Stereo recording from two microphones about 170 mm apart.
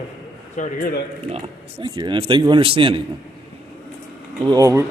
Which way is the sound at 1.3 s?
30° right (ahead or behind).